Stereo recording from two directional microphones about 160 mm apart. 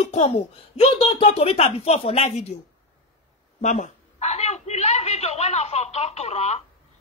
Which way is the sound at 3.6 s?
45° left (ahead or behind).